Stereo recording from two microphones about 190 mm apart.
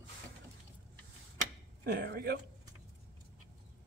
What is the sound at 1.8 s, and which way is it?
Speech, 60° right (ahead or behind).